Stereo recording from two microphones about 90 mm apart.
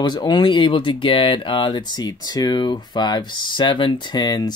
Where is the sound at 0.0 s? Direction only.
55° left (ahead or behind).